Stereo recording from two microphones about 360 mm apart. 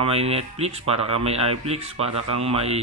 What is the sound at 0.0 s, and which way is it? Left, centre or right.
Speech, centre.